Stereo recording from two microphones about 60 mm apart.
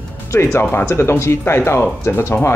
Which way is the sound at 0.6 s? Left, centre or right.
Left.